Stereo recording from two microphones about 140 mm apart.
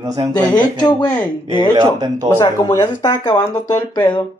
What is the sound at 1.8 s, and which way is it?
Speech, 30° right (ahead or behind).